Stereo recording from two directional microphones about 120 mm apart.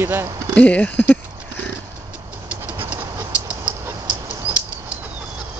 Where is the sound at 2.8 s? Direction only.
20° right (ahead or behind).